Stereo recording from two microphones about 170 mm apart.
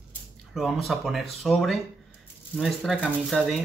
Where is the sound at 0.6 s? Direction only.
Centre (ahead or behind).